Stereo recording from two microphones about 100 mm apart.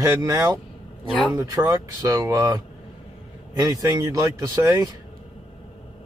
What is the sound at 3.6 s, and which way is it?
Speech, 35° right (ahead or behind).